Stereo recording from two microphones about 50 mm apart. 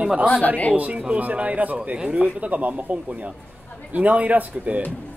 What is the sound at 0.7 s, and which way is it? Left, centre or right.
Speech, right.